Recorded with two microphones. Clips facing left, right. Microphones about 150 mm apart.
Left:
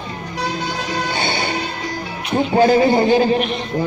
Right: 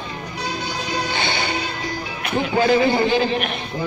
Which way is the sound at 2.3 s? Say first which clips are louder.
Left 4 dB; 40° left (ahead or behind).